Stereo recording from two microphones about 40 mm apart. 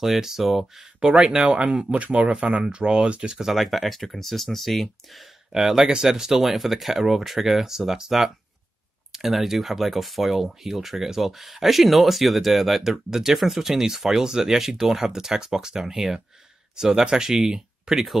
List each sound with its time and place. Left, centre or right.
0.0 s speech: centre
1.0 s speech: right
3.3 s speech: centre
5.5 s speech: centre